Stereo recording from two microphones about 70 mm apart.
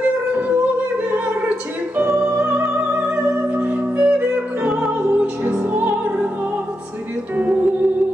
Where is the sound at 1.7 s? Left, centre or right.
Right.